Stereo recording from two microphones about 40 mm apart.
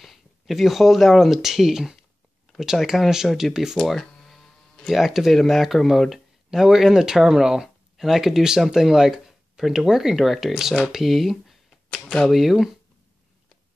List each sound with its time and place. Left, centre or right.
0.0 s speech: centre
3.8 s speech: centre
4.3 s a sound: centre
4.9 s speech: centre
11.9 s speech: left
12.3 s speech: centre